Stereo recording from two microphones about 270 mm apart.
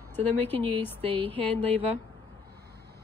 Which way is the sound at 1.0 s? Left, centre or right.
Right.